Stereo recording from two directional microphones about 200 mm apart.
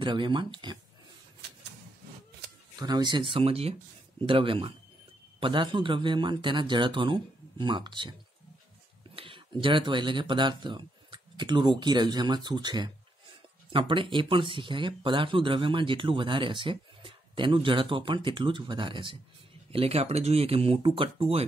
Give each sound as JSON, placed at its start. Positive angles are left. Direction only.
{"t": 0.0, "sound": "speech", "side_deg": -25}
{"t": 2.7, "sound": "speech", "side_deg": -20}